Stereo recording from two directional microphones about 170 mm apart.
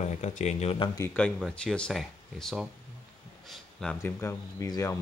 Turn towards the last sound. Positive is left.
turn(degrees=15)  # may be behind; listen again after turning